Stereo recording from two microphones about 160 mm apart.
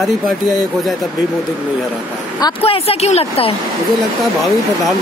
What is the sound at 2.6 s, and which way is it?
Speech, 40° left (ahead or behind).